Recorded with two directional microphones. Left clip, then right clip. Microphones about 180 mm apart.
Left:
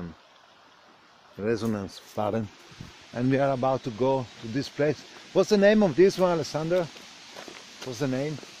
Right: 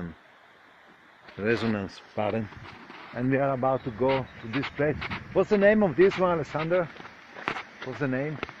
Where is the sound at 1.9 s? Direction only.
30° left (ahead or behind).